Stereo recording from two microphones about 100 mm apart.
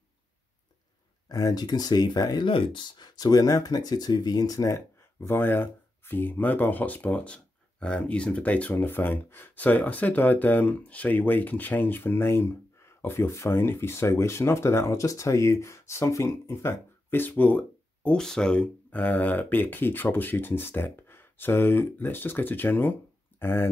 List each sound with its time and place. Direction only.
1.3 s speech: 40° left (ahead or behind)
2.4 s speech: 55° left (ahead or behind); by 23.7 s 25° left (ahead or behind)